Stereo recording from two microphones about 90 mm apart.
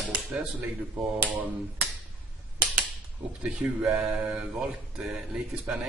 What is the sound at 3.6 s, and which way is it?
Speech, 5° right (ahead or behind).